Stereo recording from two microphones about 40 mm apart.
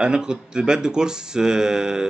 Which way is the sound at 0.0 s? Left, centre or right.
Right.